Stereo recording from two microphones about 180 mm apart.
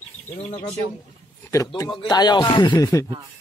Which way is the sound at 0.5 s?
25° left (ahead or behind).